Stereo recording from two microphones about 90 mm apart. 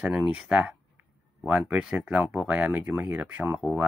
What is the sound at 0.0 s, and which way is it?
Speech, 15° right (ahead or behind).